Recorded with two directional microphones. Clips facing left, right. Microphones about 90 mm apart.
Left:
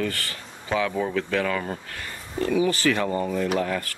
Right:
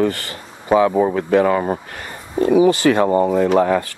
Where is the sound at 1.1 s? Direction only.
30° right (ahead or behind).